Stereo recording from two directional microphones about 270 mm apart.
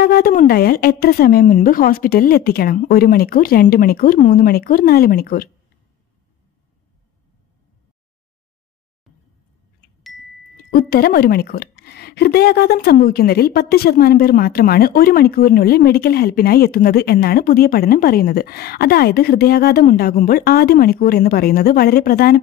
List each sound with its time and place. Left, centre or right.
0.0 s a woman's voice: left
10.7 s a woman's voice: left